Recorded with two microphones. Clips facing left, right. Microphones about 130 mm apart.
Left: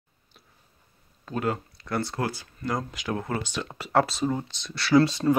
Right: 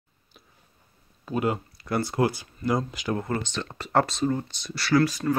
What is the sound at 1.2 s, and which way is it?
Speech, 10° right (ahead or behind).